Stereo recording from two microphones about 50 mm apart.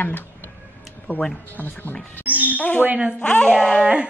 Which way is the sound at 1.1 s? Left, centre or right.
Right.